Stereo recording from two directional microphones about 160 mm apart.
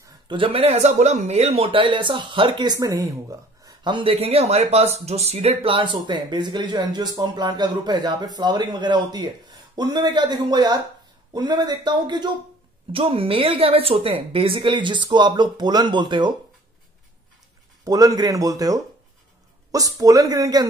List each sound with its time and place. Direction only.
0.0 s a woman's voice: 30° right (ahead or behind)
17.8 s speech: 25° right (ahead or behind)